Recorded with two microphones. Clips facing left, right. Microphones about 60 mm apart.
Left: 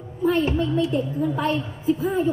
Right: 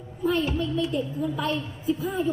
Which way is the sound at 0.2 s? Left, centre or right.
Left.